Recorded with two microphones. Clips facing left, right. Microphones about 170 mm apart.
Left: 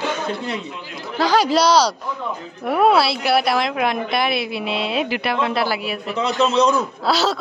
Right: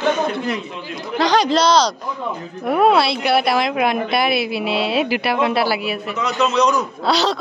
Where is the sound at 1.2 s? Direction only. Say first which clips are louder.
Even; 5° left (ahead or behind).